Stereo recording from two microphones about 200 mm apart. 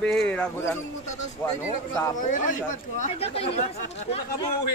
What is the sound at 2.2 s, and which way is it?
Speech, 40° left (ahead or behind).